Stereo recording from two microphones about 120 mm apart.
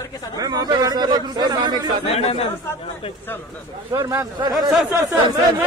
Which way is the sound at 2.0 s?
55° left (ahead or behind).